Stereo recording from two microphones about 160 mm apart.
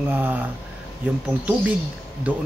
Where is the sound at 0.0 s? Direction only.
10° right (ahead or behind).